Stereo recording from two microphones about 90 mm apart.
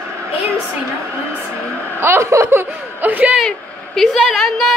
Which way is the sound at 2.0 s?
30° right (ahead or behind).